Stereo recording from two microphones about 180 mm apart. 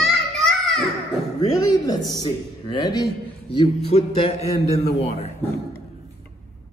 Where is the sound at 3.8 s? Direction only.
35° left (ahead or behind).